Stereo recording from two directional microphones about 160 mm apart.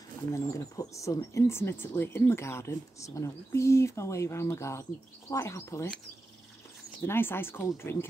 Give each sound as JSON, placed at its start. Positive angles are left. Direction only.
{"t": 0.3, "sound": "speech", "side_deg": 20}
{"t": 7.0, "sound": "speech", "side_deg": 15}